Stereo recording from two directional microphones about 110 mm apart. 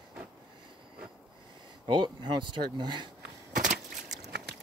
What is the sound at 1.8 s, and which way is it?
Speech, 45° right (ahead or behind).